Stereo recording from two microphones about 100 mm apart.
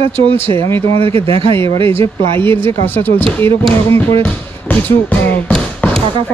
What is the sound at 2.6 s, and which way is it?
Speech, 20° left (ahead or behind).